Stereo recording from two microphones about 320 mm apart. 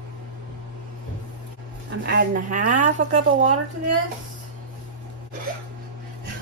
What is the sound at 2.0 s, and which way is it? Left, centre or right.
Speech, right.